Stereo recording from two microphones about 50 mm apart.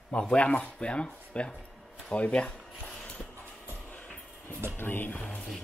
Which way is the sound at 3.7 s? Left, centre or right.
Left.